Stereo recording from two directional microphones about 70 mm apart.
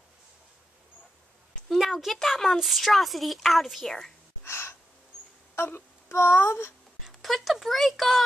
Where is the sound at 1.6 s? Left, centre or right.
Centre.